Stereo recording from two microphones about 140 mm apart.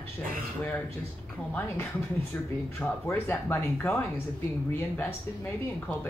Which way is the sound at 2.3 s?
10° left (ahead or behind).